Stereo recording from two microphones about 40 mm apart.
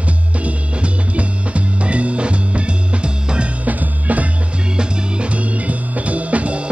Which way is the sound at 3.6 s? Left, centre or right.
Right.